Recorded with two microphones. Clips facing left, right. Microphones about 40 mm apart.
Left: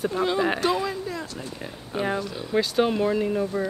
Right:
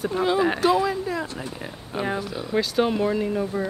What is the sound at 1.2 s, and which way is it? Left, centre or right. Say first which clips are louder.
Speech: right 3 dB; right.